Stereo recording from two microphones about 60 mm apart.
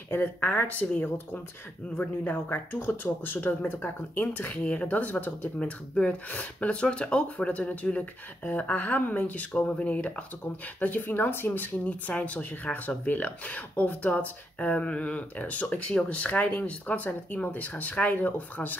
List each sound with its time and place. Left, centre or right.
0.1 s speech: left